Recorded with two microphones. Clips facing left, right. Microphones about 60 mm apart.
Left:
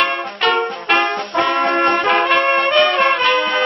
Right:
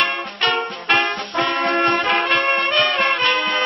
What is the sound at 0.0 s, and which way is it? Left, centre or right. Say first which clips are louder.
Music: left 3 dB; centre.